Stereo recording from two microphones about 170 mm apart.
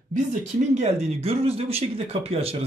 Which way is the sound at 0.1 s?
45° right (ahead or behind).